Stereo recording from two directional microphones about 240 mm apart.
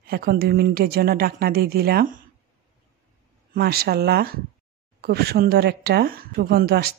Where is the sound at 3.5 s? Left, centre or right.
Right.